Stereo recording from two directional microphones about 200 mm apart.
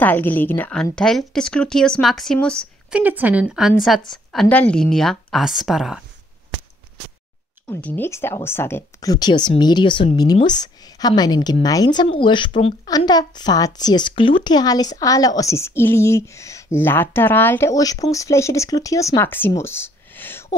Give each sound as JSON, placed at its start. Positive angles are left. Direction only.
{"t": 0.0, "sound": "a woman's voice", "side_deg": 10}
{"t": 3.0, "sound": "a woman's voice", "side_deg": -10}
{"t": 7.6, "sound": "speech", "side_deg": 10}